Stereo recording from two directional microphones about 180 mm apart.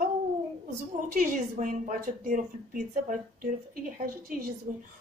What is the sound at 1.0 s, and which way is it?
A woman's voice, 45° right (ahead or behind).